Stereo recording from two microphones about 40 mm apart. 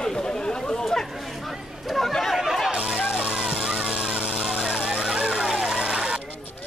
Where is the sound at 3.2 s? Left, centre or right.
Right.